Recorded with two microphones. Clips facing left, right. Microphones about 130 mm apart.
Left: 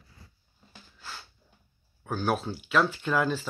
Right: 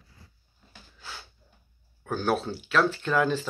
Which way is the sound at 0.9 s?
Centre (ahead or behind).